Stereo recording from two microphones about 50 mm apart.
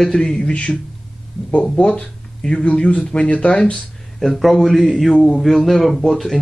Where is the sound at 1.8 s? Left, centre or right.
Left.